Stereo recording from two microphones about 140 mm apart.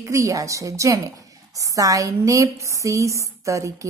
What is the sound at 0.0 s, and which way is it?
A woman's voice, 20° right (ahead or behind).